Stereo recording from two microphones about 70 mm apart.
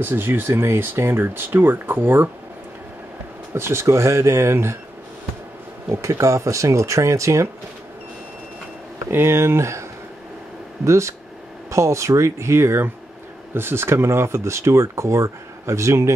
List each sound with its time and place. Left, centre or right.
0.0 s speech: right
3.5 s speech: right
5.9 s speech: right
9.1 s speech: right
10.9 s speech: right